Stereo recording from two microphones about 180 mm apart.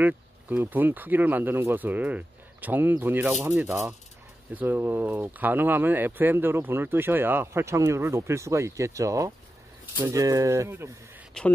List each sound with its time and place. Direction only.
0.0 s speech: 10° right (ahead or behind)
11.4 s speech: 5° left (ahead or behind)